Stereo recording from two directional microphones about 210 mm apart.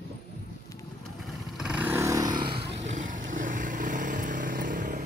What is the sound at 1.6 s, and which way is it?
Vehicle, 5° right (ahead or behind).